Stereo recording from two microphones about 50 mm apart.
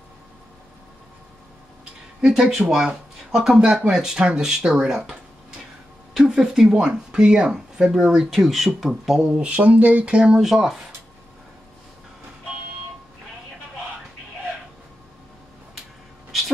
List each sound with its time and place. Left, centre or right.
2.2 s speech: centre
6.1 s speech: centre
9.4 s speech: right
10.4 s speech: centre
16.3 s a sound: centre